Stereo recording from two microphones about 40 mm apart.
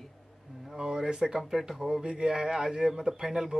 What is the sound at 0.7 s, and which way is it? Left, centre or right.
A man's voice, centre.